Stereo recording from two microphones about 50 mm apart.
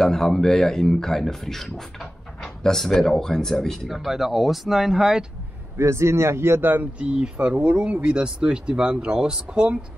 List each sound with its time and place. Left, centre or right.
0.0 s speech: centre
3.9 s speech: centre
5.8 s a man's voice: right
7.0 s speech: right